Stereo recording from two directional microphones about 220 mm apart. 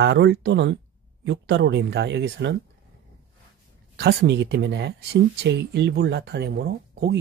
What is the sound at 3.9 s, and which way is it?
Speech, 50° right (ahead or behind).